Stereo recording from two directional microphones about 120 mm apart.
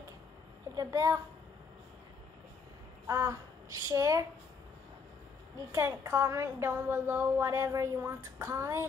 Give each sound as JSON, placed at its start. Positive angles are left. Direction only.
{"t": 0.7, "sound": "a child's voice", "side_deg": -30}
{"t": 3.1, "sound": "a woman's voice", "side_deg": -25}
{"t": 5.7, "sound": "speech", "side_deg": -25}